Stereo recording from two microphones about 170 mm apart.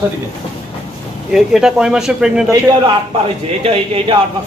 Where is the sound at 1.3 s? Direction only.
5° right (ahead or behind).